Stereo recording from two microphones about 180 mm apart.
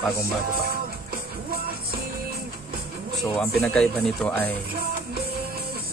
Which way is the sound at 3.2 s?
Centre (ahead or behind).